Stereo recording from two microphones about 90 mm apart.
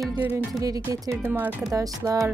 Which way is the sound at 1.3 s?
20° right (ahead or behind).